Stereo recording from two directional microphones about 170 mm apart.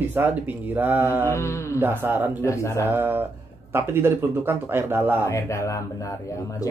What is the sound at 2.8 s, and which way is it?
Speech, 15° right (ahead or behind).